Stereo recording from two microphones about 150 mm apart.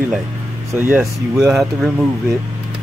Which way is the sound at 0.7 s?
15° right (ahead or behind).